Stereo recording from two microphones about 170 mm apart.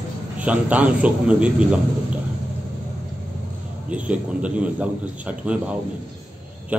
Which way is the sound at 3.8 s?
10° right (ahead or behind).